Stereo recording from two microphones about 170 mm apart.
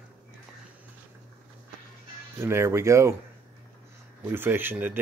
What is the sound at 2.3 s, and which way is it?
Speech, 15° right (ahead or behind).